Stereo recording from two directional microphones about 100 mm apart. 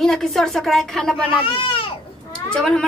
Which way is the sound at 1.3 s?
65° left (ahead or behind).